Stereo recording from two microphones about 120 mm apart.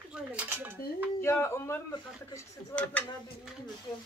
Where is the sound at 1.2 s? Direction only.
20° left (ahead or behind).